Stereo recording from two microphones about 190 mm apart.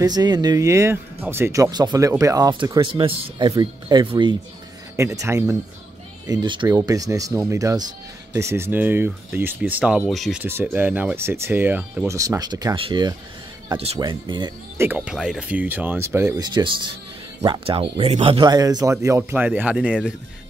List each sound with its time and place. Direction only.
0.0 s speech: 20° right (ahead or behind)
4.9 s speech: 15° right (ahead or behind); by 10.4 s centre (ahead or behind)
10.4 s speech: 10° right (ahead or behind)
14.8 s speech: 10° right (ahead or behind)